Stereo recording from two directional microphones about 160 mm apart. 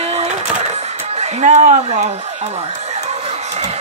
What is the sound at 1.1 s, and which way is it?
Speech, 45° right (ahead or behind).